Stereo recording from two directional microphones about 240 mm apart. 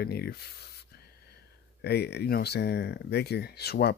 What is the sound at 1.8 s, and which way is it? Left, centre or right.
Speech, left.